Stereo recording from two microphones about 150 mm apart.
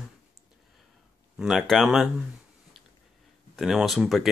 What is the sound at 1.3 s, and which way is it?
Speech, centre (ahead or behind).